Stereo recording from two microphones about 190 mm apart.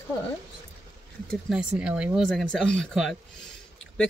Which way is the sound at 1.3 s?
5° right (ahead or behind).